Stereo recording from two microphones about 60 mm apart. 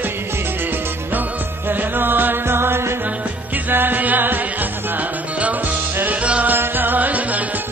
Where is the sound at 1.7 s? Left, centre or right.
Right.